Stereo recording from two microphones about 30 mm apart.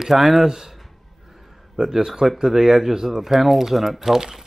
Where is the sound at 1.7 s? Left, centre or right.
Centre.